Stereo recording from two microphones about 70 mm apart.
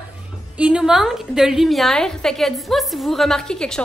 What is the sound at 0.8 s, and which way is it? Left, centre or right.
A woman's voice, centre.